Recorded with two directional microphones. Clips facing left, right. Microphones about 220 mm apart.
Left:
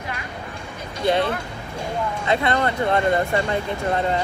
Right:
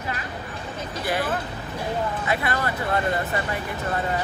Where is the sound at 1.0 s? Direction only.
25° left (ahead or behind).